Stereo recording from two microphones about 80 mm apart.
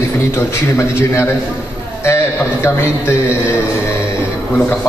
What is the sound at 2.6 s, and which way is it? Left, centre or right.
Speech, left.